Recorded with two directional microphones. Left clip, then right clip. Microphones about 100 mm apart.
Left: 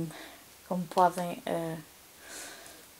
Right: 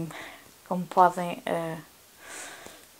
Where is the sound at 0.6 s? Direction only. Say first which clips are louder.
Right 4 dB; 20° right (ahead or behind).